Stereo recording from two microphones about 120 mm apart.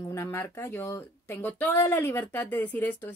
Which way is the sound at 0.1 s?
20° left (ahead or behind).